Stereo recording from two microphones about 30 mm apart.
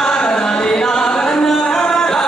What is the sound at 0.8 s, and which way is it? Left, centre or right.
Singing, left.